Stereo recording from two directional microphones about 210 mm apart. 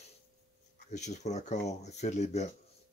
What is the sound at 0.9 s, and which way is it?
Speech, 35° left (ahead or behind).